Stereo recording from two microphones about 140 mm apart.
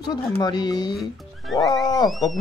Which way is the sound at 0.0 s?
30° left (ahead or behind).